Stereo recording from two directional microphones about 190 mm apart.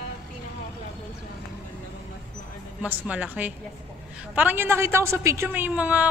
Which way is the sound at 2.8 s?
5° right (ahead or behind).